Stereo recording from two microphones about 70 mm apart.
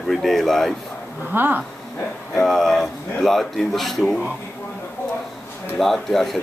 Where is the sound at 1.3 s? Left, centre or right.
Right.